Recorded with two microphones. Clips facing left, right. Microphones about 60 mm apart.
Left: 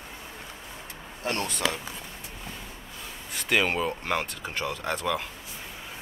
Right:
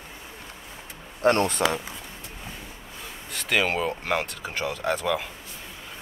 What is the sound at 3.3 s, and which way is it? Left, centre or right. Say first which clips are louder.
Speech: right 1 dB; centre.